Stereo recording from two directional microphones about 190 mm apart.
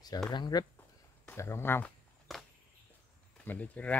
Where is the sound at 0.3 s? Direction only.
20° left (ahead or behind).